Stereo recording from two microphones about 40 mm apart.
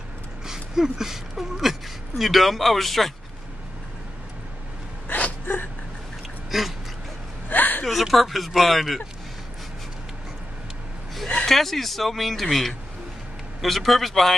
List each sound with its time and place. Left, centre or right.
0.5 s speech: centre
5.0 s a sound: left
6.5 s speech: centre
7.4 s whimper: left
7.8 s speech: centre
11.4 s speech: centre